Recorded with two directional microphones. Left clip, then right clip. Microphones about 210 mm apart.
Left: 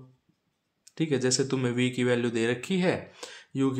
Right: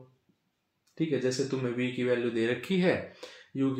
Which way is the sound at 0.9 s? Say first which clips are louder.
Left 3 dB; 35° left (ahead or behind).